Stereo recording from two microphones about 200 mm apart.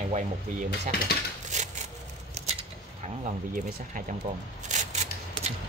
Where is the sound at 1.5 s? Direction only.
35° right (ahead or behind).